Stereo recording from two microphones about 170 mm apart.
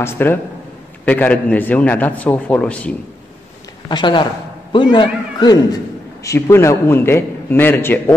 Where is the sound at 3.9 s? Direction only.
25° left (ahead or behind); by 8.0 s 10° left (ahead or behind).